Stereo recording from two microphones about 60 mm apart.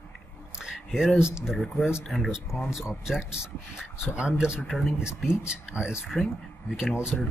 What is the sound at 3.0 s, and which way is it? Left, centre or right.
Speech, centre.